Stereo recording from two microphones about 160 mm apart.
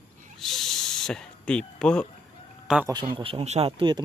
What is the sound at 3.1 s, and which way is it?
Speech, 35° right (ahead or behind).